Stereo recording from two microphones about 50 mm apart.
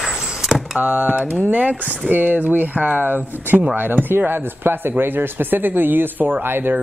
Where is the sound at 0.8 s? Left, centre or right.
Right.